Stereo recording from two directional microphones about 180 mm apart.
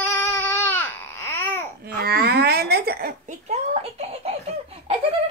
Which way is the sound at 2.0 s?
60° right (ahead or behind).